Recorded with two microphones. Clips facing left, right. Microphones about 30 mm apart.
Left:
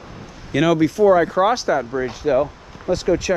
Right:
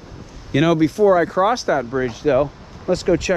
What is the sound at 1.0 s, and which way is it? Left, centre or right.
Speech, left.